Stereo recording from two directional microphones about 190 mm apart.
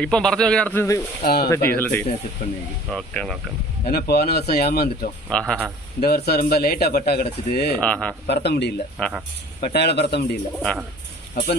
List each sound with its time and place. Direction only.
0.0 s speech: 5° left (ahead or behind)
1.2 s speech: 55° left (ahead or behind)
1.5 s speech: 10° left (ahead or behind)
2.4 s speech: 50° left (ahead or behind)
2.9 s speech: centre (ahead or behind)
3.9 s speech: 55° left (ahead or behind)
5.3 s speech: 5° left (ahead or behind)
5.9 s speech: 55° left (ahead or behind)
7.8 s speech: 5° left (ahead or behind)
8.3 s speech: 60° left (ahead or behind)
9.0 s speech: 5° left (ahead or behind)
9.6 s speech: 60° left (ahead or behind)
10.6 s speech: 5° left (ahead or behind)